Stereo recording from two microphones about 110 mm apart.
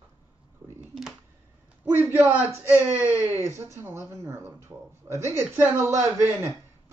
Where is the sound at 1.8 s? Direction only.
20° right (ahead or behind).